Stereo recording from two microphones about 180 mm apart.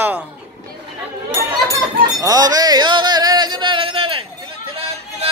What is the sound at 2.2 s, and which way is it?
Music, 20° right (ahead or behind).